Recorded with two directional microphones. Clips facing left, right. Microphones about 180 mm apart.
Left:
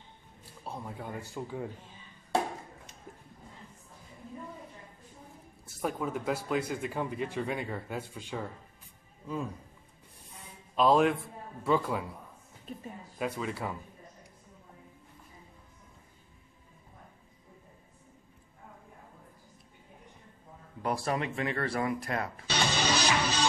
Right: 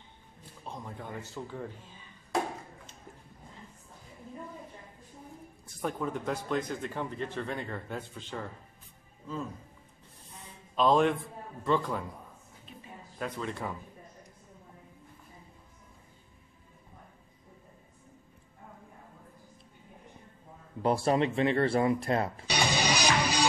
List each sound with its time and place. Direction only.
0.7 s speech: 5° left (ahead or behind)
5.8 s speech: 5° left (ahead or behind)
10.8 s speech: 5° left (ahead or behind)
13.2 s speech: 5° left (ahead or behind)
20.8 s speech: 25° right (ahead or behind)
22.5 s music: 15° right (ahead or behind)